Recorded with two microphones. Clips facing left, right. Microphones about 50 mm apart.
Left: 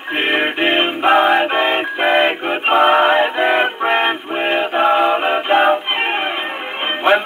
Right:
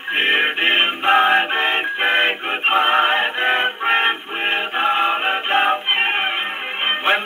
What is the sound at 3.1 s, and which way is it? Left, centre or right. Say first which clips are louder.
Music: left 4 dB; centre.